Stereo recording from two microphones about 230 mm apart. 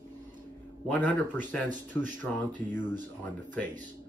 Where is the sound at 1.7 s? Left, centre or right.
Right.